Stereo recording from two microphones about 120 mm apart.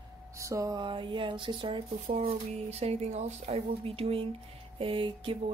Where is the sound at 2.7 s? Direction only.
65° right (ahead or behind); by 5.3 s 45° right (ahead or behind).